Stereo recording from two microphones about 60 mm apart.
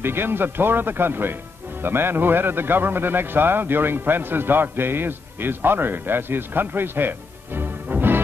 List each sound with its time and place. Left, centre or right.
0.0 s a man's voice: right